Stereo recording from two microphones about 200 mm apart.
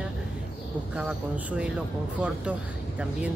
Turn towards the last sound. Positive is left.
turn(degrees=-5)  # may be behind; listen again after turning